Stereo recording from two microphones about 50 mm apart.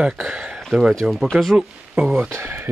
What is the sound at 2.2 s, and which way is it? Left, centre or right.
Speech, right.